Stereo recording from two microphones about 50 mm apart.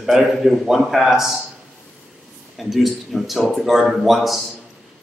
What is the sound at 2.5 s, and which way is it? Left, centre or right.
A man's voice, centre.